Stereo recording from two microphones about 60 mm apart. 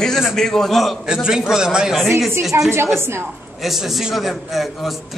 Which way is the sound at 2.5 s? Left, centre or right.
Right.